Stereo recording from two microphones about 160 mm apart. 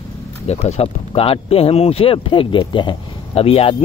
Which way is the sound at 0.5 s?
40° left (ahead or behind).